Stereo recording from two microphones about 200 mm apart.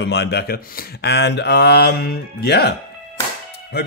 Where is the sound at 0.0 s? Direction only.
55° left (ahead or behind).